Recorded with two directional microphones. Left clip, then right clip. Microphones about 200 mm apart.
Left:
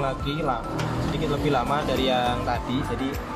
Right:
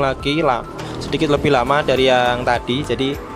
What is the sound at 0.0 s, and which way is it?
Speech, 40° right (ahead or behind).